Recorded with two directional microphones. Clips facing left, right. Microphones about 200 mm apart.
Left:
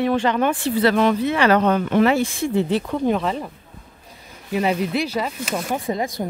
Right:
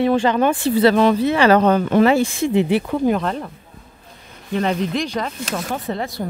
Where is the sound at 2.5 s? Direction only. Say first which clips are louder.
Right 3 dB; 15° right (ahead or behind); by 3.5 s centre (ahead or behind).